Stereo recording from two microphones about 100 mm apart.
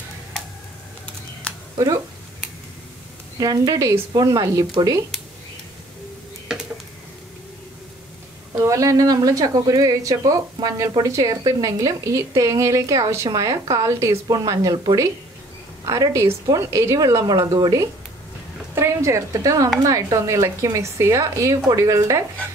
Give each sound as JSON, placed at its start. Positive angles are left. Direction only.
{"t": 3.3, "sound": "a woman's voice", "side_deg": -40}
{"t": 8.5, "sound": "a woman's voice", "side_deg": -30}
{"t": 15.8, "sound": "a woman's voice", "side_deg": -35}